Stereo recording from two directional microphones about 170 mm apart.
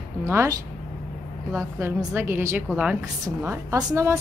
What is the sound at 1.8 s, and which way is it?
A woman's voice, 15° right (ahead or behind).